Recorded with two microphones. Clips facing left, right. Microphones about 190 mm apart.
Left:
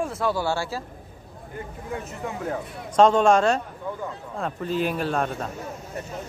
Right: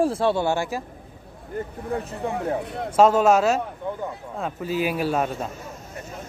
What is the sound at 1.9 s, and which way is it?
Speech, 30° right (ahead or behind).